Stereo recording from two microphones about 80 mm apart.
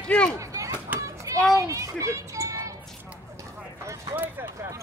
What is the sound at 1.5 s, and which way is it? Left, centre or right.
Music, right.